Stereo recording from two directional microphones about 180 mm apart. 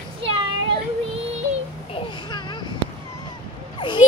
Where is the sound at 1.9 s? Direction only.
25° left (ahead or behind).